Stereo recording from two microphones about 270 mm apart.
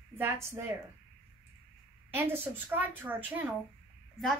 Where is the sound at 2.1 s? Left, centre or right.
Centre.